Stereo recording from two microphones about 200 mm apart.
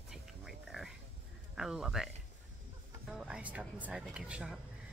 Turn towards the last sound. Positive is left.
turn(degrees=-5)  # may be behind; listen again after turning